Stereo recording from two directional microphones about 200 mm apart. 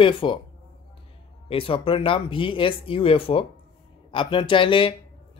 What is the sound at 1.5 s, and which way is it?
Speech, 25° left (ahead or behind).